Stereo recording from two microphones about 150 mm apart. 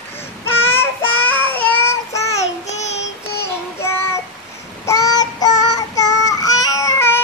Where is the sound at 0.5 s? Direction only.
15° left (ahead or behind).